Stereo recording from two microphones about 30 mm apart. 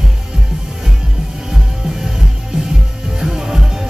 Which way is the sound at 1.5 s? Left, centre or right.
Centre.